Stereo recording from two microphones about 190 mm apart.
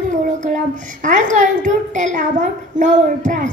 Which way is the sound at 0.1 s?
40° right (ahead or behind).